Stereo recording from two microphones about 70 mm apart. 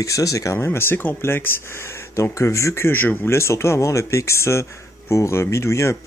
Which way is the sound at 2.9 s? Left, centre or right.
Left.